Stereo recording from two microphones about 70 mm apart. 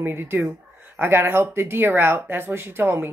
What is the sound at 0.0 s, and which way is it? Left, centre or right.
A woman's voice, right.